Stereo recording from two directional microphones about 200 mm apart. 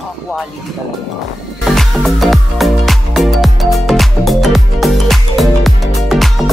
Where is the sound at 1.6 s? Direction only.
Centre (ahead or behind).